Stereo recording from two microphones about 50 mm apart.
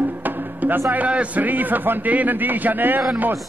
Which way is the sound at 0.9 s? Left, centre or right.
Right.